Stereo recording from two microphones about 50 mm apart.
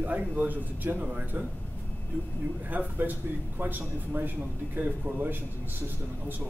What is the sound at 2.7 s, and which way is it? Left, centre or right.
Speech, right.